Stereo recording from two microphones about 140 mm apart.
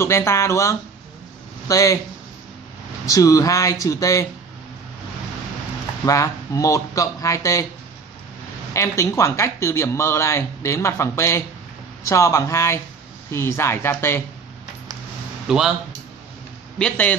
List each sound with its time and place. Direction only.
0.0 s speech: 20° left (ahead or behind)
3.1 s speech: 25° left (ahead or behind)
6.0 s speech: 25° left (ahead or behind)
8.7 s a woman's voice: 20° left (ahead or behind)
15.4 s a man's voice: 5° right (ahead or behind)
16.7 s a woman's voice: 10° left (ahead or behind)